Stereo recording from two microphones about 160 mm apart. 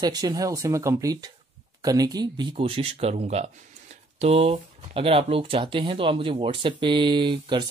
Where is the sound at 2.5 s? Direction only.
40° right (ahead or behind).